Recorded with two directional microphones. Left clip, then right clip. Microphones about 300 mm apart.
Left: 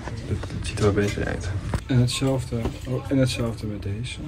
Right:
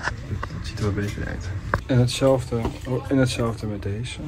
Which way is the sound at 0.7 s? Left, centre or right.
Left.